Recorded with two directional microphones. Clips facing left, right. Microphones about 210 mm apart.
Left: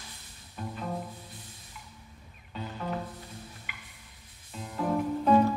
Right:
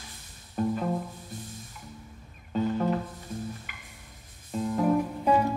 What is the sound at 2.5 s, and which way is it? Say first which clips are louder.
Music: right 10 dB; 45° right (ahead or behind).